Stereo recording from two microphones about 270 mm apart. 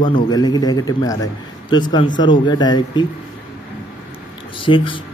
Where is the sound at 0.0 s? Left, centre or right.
Centre.